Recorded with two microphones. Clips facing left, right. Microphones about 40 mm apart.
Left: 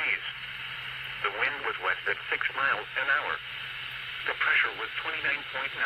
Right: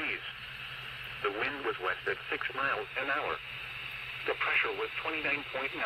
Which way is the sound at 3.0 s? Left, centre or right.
Left.